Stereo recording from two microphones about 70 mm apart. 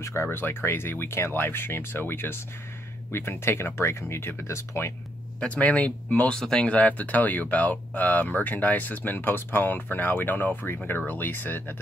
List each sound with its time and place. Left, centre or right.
0.0 s speech: left
5.4 s speech: centre
6.7 s speech: left